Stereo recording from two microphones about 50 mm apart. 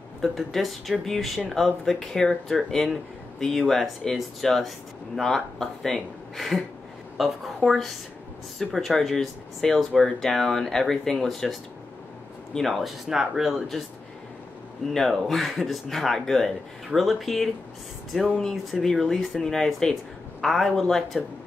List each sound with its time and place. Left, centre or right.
0.2 s speech: centre
12.8 s speech: centre
15.0 s speech: centre